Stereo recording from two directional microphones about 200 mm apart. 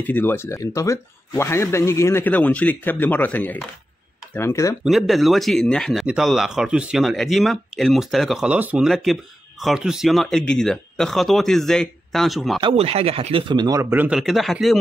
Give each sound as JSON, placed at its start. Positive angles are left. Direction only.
{"t": 0.0, "sound": "speech", "side_deg": 10}
{"t": 4.8, "sound": "speech", "side_deg": 0}
{"t": 12.5, "sound": "speech", "side_deg": -25}